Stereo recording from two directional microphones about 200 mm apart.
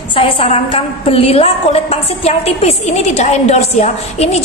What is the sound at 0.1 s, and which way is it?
A woman's voice, 30° left (ahead or behind).